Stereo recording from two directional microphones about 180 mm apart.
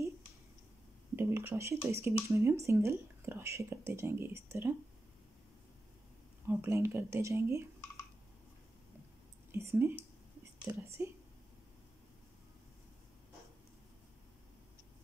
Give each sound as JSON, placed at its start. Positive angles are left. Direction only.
{"t": 1.1, "sound": "speech", "side_deg": -15}
{"t": 6.4, "sound": "speech", "side_deg": -15}
{"t": 9.5, "sound": "speech", "side_deg": -15}